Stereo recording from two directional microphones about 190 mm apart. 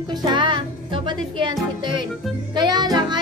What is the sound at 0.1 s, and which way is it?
Music, 25° right (ahead or behind).